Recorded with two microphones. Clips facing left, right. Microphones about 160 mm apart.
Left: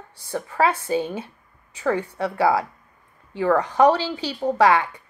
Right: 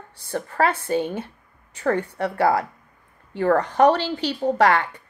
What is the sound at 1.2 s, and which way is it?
A woman's voice, 55° right (ahead or behind).